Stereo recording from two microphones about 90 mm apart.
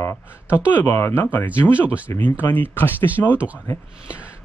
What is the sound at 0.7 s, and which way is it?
Speech, 25° left (ahead or behind).